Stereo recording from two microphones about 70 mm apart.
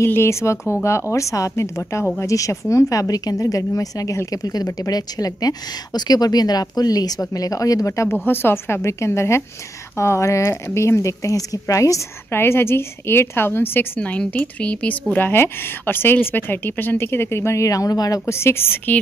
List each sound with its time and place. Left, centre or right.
0.0 s a woman's voice: left
8.1 s a woman's voice: left
12.3 s a woman's voice: left
13.9 s a woman's voice: centre; by 18.2 s left
18.2 s a woman's voice: left